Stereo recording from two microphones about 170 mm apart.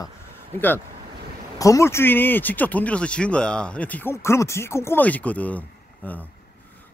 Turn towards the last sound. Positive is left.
turn(degrees=10)  # may be behind; listen again after turning